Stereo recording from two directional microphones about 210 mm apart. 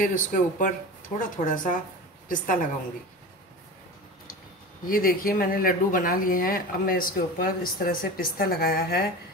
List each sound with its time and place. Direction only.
0.0 s a woman's voice: 40° left (ahead or behind)
4.8 s speech: 45° left (ahead or behind)